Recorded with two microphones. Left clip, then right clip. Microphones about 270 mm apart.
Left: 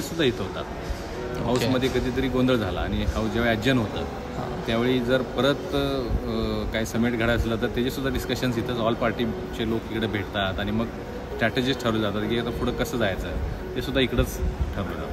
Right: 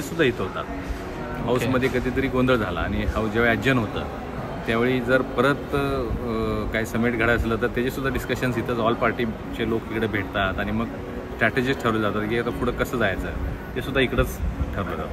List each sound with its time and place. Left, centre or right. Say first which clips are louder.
0.2 s speech: right 3 dB; centre
1.5 s speech: right 2 dB; centre